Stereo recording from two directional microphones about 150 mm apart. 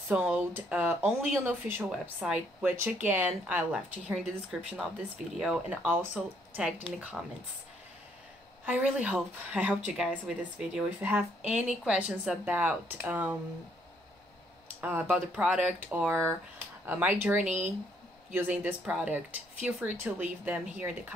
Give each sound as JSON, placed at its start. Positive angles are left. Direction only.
{"t": 0.1, "sound": "speech", "side_deg": -10}
{"t": 8.6, "sound": "speech", "side_deg": -10}
{"t": 14.8, "sound": "speech", "side_deg": -10}
{"t": 17.5, "sound": "speech", "side_deg": -50}
{"t": 18.3, "sound": "speech", "side_deg": -10}